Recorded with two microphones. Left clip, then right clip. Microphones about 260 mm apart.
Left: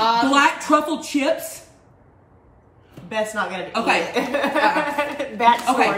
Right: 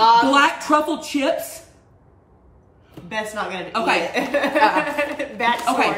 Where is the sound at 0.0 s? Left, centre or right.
Centre.